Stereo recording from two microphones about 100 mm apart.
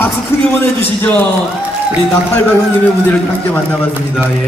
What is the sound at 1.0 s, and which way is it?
Speech, 20° left (ahead or behind).